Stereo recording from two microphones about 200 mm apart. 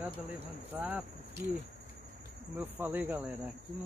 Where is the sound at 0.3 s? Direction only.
5° right (ahead or behind).